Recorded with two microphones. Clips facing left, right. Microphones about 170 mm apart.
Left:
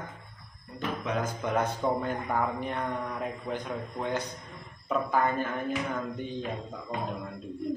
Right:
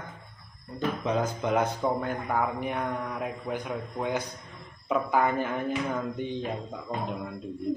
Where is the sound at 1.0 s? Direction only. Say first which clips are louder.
Right 3 dB; 25° right (ahead or behind).